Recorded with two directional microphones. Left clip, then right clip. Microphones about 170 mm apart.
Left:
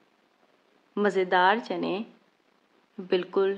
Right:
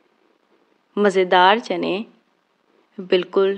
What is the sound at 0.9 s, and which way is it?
Speech, 30° right (ahead or behind).